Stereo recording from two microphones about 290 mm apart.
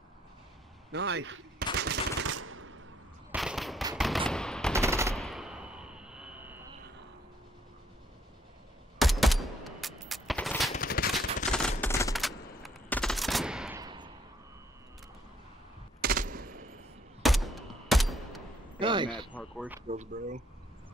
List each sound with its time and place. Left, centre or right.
0.9 s machine gun: right
3.3 s fireworks: centre
3.8 s machine gun: centre
4.7 s machine gun: centre
5.1 s fireworks: centre
8.9 s a sound: centre
10.7 s machine gun: left
11.8 s fusillade: centre
16.0 s machine gun: right
17.2 s fusillade: centre
18.8 s a sound: centre
19.3 s a sound: centre
19.9 s speech: right